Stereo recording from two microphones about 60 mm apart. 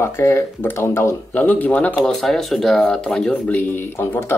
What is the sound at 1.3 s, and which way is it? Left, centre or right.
Speech, left.